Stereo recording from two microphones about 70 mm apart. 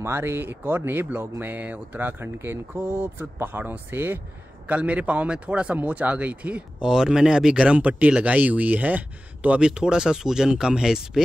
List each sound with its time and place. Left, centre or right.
0.0 s speech: right
4.6 s speech: centre